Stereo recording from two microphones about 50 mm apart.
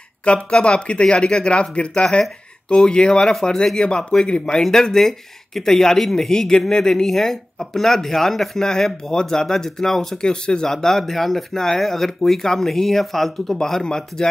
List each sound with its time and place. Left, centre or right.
0.2 s speech: centre